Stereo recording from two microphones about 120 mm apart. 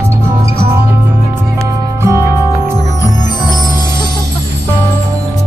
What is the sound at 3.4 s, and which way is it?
Jingle bell, 35° left (ahead or behind).